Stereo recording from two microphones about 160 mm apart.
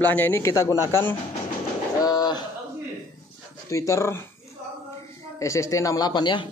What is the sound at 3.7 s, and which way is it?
Speech, 20° left (ahead or behind).